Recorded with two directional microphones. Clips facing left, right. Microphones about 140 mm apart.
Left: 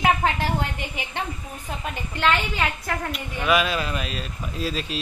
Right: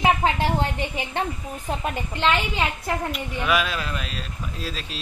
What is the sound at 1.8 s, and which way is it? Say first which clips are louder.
A woman's voice: left 1 dB; 20° right (ahead or behind).